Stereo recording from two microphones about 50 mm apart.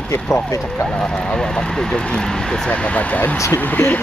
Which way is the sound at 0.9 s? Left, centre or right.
Centre.